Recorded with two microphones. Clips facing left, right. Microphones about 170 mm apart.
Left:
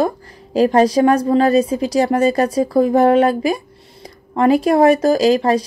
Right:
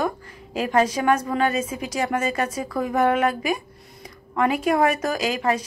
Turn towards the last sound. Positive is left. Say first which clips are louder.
# left 10 dB
turn(degrees=35)  # may be behind; listen again after turning